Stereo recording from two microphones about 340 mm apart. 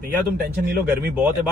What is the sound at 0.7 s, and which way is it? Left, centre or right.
Speech, right.